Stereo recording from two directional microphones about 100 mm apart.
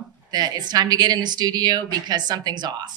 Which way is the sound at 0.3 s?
45° right (ahead or behind).